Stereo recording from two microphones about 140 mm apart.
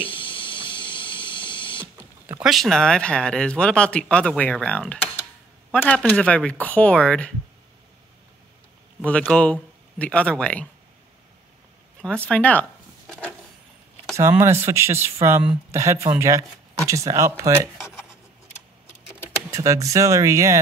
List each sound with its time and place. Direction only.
0.0 s a sound: 40° left (ahead or behind)
2.4 s speech: centre (ahead or behind)
9.0 s speech: 10° left (ahead or behind)
12.0 s speech: 5° left (ahead or behind)
13.0 s a sound: 5° left (ahead or behind)
14.3 s speech: 20° right (ahead or behind)
19.5 s speech: 20° right (ahead or behind)